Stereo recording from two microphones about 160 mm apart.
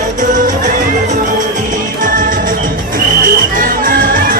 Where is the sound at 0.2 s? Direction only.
50° right (ahead or behind).